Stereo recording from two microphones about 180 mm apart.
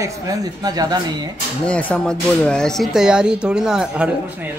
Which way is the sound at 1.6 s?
5° left (ahead or behind).